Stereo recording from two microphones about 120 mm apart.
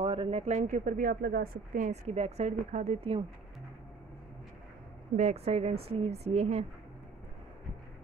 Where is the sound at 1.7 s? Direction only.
75° right (ahead or behind).